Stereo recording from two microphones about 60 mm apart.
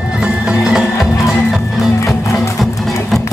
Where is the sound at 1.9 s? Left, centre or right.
Left.